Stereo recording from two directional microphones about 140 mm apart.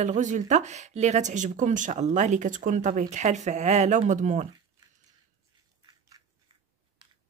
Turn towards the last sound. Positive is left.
turn(degrees=-25)  # may be behind; listen again after turning